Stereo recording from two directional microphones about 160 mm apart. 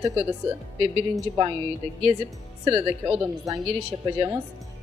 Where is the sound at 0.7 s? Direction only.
35° right (ahead or behind).